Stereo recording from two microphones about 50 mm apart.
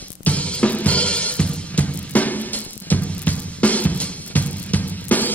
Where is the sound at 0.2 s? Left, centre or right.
Left.